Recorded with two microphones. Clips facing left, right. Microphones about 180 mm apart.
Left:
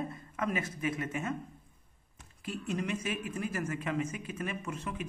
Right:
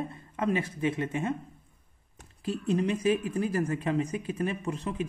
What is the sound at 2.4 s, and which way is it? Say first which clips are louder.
Speech: right 7 dB; 35° right (ahead or behind).